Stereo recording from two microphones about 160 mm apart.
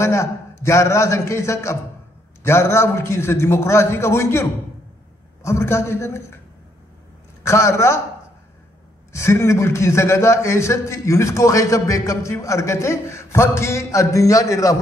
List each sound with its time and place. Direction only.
0.0 s a man's voice: 15° left (ahead or behind)
7.4 s a man's voice: 20° left (ahead or behind)
9.1 s a man's voice: 15° left (ahead or behind)